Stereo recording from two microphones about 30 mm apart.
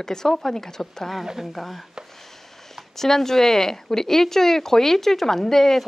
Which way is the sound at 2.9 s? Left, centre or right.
Centre.